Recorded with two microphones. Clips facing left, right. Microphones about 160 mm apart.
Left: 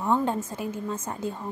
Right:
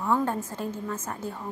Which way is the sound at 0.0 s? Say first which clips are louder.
Left 1 dB; 20° left (ahead or behind).